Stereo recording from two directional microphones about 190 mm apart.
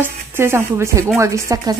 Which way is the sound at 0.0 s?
15° right (ahead or behind).